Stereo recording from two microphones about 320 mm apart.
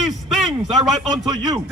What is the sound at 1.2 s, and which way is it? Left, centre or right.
Speech, centre.